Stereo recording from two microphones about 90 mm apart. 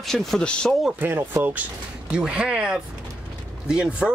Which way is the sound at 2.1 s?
10° right (ahead or behind).